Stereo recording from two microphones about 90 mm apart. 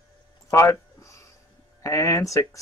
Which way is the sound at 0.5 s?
30° left (ahead or behind).